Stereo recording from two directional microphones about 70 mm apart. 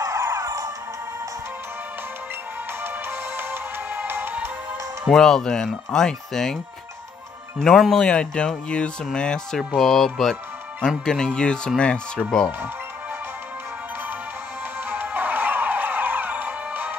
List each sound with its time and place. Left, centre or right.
0.0 s music: right
2.8 s music: right
5.1 s speech: centre
14.9 s music: right